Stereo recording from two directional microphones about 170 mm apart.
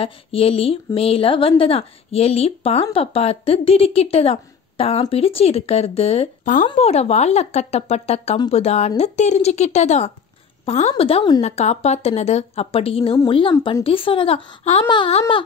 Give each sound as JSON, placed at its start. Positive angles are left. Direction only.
{"t": 0.0, "sound": "speech", "side_deg": 35}
{"t": 6.4, "sound": "a woman's voice", "side_deg": 50}
{"t": 6.7, "sound": "speech", "side_deg": 40}
{"t": 11.4, "sound": "speech", "side_deg": 40}